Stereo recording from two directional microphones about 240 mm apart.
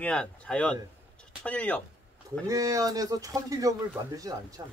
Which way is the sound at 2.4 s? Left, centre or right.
Centre.